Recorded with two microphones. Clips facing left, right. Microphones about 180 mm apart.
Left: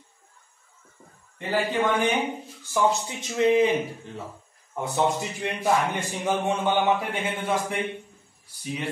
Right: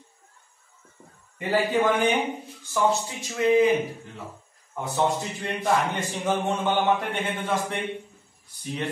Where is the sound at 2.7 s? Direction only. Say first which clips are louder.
Even; 20° left (ahead or behind).